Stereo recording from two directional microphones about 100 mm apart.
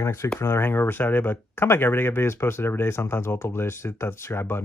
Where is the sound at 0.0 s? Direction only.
25° left (ahead or behind).